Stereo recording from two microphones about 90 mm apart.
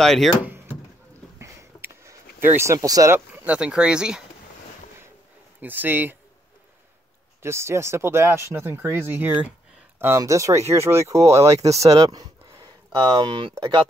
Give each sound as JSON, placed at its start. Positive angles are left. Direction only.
{"t": 0.0, "sound": "speech", "side_deg": 5}
{"t": 1.4, "sound": "a sound", "side_deg": -35}
{"t": 3.4, "sound": "speech", "side_deg": -10}
{"t": 5.6, "sound": "speech", "side_deg": -20}
{"t": 7.4, "sound": "speech", "side_deg": -30}
{"t": 13.2, "sound": "speech", "side_deg": -60}